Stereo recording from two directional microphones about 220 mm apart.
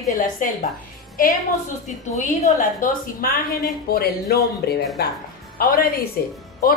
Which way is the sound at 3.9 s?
45° left (ahead or behind).